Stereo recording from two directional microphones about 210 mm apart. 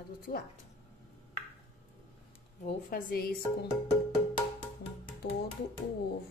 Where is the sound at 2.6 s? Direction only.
40° left (ahead or behind).